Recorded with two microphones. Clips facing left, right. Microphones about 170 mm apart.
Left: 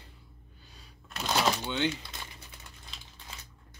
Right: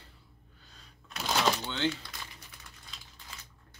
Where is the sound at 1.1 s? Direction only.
Centre (ahead or behind).